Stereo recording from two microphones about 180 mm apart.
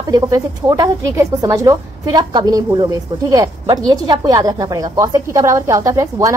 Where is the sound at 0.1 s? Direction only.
20° right (ahead or behind).